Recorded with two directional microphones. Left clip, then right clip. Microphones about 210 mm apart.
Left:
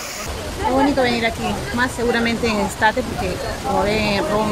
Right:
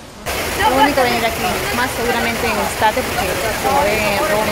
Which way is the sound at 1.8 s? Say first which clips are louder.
Left 2 dB; 25° left (ahead or behind).